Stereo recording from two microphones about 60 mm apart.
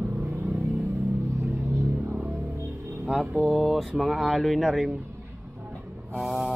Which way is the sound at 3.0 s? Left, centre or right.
Centre.